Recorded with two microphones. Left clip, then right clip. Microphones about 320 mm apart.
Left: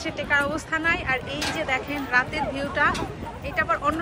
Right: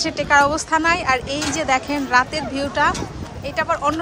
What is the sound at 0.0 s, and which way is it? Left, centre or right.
Speech, centre.